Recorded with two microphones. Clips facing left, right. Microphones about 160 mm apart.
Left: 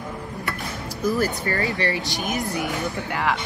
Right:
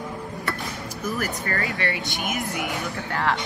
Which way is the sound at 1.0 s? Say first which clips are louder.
Left 6 dB; 35° left (ahead or behind).